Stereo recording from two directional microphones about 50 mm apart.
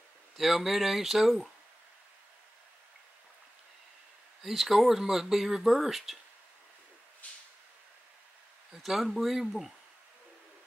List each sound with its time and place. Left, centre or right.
0.4 s speech: centre
4.4 s speech: centre
7.2 s a sound: left
8.7 s speech: centre